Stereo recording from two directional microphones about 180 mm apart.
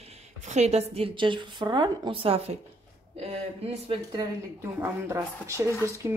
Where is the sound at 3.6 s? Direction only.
35° right (ahead or behind).